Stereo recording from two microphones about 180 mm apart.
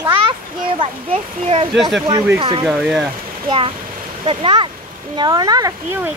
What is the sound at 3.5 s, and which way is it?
A child's voice, 30° right (ahead or behind).